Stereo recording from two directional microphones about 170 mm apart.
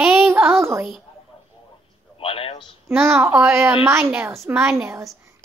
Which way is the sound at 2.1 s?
30° left (ahead or behind).